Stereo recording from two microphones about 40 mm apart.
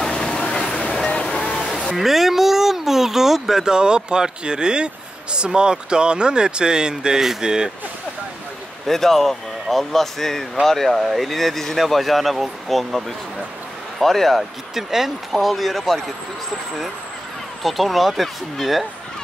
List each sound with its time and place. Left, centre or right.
0.0 s a sound: centre
0.8 s music: left
2.0 s a sound: centre
3.7 s speech: right
7.2 s speech: centre
8.8 s speech: centre
14.7 s speech: centre
17.6 s speech: centre